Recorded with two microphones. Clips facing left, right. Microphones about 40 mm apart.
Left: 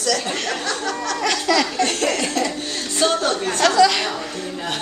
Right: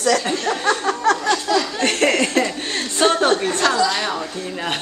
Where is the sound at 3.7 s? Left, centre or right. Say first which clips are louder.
Left 4 dB; left.